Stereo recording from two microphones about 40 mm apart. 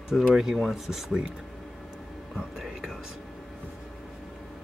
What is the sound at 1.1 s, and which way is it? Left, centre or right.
Speech, centre.